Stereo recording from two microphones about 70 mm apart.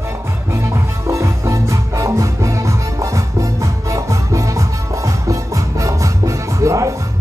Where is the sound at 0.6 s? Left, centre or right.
Right.